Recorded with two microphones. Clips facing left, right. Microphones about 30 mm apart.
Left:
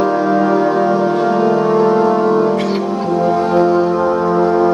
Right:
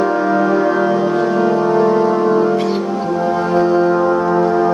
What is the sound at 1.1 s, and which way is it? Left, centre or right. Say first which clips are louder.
Music: left 1 dB; centre.